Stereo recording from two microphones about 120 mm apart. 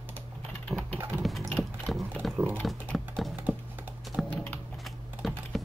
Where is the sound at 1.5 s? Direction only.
Centre (ahead or behind).